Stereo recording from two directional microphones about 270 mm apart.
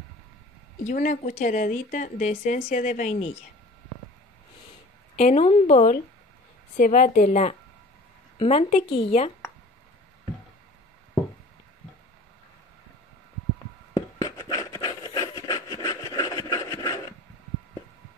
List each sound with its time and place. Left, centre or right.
0.8 s a woman's voice: left
5.1 s a woman's voice: left
13.9 s a sound: centre